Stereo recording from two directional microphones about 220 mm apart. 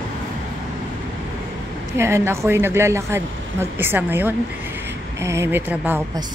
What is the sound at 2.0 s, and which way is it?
Speech, 10° right (ahead or behind).